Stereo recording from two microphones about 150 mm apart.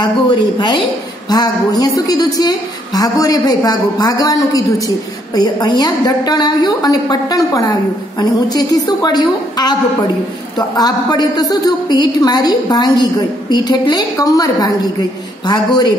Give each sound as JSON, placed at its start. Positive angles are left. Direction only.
{"t": 0.0, "sound": "a woman's voice", "side_deg": 30}
{"t": 10.8, "sound": "a woman's voice", "side_deg": 25}